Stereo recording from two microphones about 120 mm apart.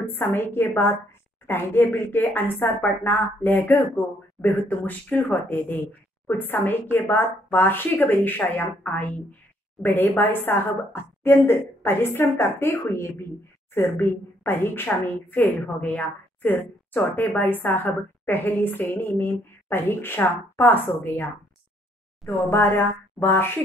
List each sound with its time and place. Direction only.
0.0 s a woman's voice: 15° left (ahead or behind)